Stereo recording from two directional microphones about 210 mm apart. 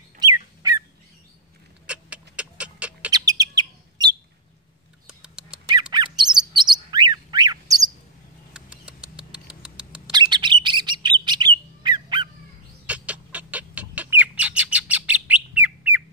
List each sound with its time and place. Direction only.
0.2 s fowl: 20° right (ahead or behind)
1.9 s a sound: 5° right (ahead or behind)
3.1 s bird: 15° right (ahead or behind)
5.0 s a sound: 5° right (ahead or behind)
5.7 s squawk: 20° right (ahead or behind)
6.1 s bird: 20° right (ahead or behind)
8.5 s rodents: 5° right (ahead or behind)
10.3 s bird: 20° right (ahead or behind)
12.8 s bird: 5° right (ahead or behind)